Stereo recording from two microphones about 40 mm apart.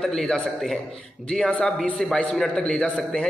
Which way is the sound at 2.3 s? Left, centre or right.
Centre.